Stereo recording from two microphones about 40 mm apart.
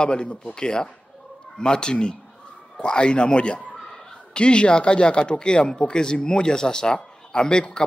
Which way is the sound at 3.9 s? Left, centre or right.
Centre.